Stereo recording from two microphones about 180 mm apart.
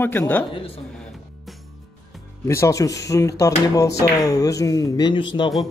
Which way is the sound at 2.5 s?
15° left (ahead or behind).